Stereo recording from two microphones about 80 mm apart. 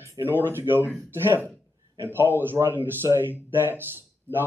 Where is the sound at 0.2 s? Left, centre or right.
Right.